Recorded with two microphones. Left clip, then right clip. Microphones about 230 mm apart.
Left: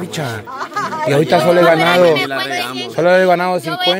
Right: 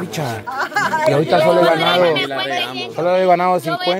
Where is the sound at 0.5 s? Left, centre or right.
Right.